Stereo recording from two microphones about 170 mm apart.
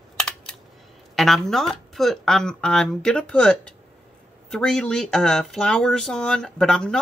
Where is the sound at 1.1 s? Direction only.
Centre (ahead or behind).